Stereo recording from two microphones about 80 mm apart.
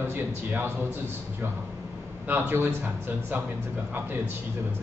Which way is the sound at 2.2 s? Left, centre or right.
Right.